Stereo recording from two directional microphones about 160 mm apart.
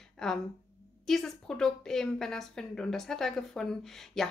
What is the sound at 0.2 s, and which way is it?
A woman's voice, 5° left (ahead or behind).